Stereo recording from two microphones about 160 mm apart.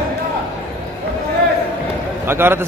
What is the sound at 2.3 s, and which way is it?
Speech, 15° right (ahead or behind).